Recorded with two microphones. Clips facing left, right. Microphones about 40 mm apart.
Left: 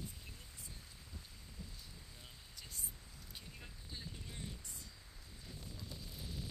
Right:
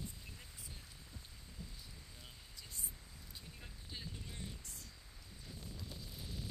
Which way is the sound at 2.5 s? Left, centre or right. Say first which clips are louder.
Left 1 dB; left.